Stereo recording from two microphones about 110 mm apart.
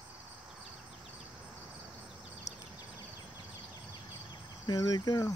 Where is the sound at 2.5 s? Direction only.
90° left.